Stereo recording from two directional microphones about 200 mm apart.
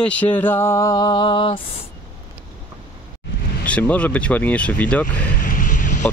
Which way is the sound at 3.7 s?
5° left (ahead or behind).